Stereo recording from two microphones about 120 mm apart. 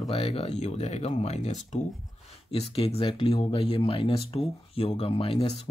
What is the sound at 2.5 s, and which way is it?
Speech, 55° left (ahead or behind).